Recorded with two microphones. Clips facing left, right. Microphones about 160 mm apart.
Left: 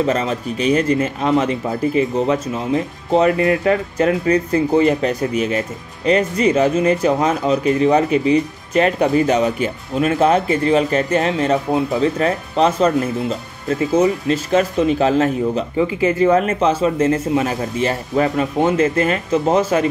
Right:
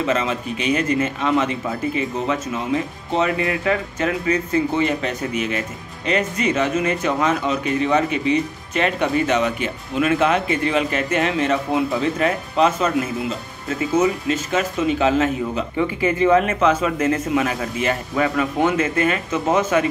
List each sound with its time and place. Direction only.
0.0 s speech: 40° left (ahead or behind)